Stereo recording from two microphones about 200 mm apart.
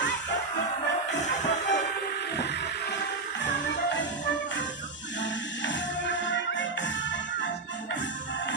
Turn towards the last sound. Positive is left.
turn(degrees=65)  # may be behind; listen again after turning